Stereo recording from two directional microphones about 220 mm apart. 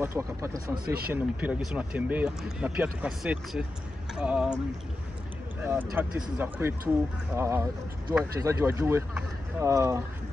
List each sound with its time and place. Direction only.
0.0 s speech: 10° right (ahead or behind)
0.8 s speech: 45° right (ahead or behind)
1.1 s speech: 5° right (ahead or behind)
5.6 s speech: 10° right (ahead or behind)